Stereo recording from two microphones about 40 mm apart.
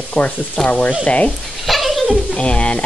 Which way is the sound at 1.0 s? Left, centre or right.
Left.